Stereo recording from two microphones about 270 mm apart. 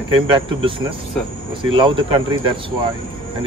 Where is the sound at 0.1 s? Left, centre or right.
Centre.